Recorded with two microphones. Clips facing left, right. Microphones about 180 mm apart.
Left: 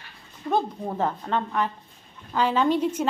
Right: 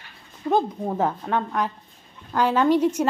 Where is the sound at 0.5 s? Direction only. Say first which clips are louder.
Right 3 dB; 10° right (ahead or behind).